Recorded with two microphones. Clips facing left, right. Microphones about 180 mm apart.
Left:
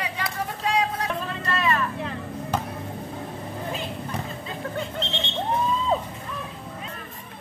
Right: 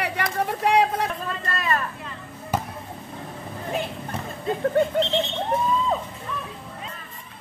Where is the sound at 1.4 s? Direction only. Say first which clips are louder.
Left 2 dB; 40° right (ahead or behind).